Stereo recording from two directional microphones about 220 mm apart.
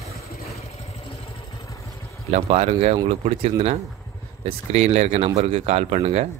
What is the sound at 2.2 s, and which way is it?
Speech, 30° right (ahead or behind).